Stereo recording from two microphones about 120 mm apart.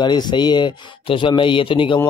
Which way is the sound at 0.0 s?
40° left (ahead or behind).